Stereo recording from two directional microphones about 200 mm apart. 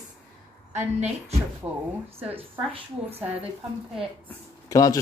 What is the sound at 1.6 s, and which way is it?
Speech, 15° right (ahead or behind).